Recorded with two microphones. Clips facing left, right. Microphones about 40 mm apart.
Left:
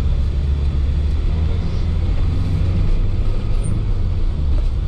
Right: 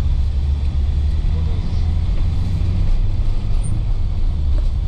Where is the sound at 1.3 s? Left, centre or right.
Centre.